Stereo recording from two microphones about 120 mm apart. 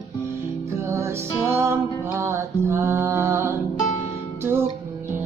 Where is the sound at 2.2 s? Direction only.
20° right (ahead or behind).